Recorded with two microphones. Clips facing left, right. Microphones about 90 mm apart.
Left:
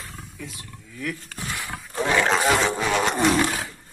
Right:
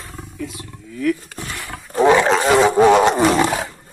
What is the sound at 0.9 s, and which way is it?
Speech, centre (ahead or behind).